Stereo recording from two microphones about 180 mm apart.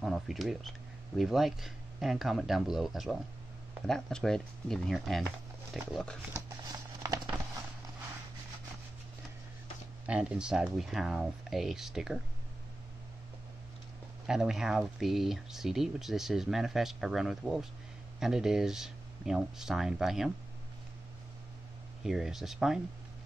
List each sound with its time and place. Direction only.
0.0 s speech: centre (ahead or behind)
6.7 s a sound: 20° right (ahead or behind)
10.0 s speech: 5° right (ahead or behind)
14.2 s speech: 5° right (ahead or behind)
22.0 s speech: centre (ahead or behind)